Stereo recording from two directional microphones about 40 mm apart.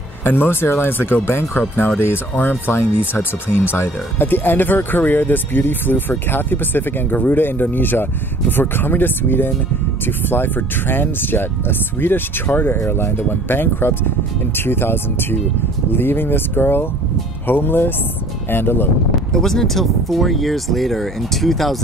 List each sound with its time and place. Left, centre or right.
0.2 s speech: left
2.6 s speech: left
19.3 s speech: centre